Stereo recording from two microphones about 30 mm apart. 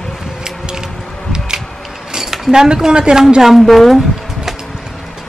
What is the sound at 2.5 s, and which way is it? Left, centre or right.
Speech, right.